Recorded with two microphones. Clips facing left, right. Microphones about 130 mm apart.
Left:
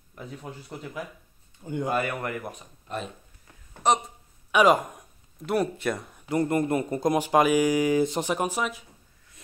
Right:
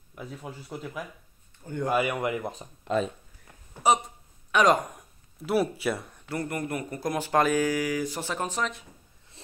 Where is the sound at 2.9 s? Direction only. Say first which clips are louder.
Right 8 dB; 80° right.